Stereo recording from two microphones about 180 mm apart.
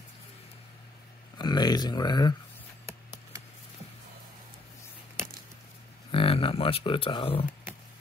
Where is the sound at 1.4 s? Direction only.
25° left (ahead or behind).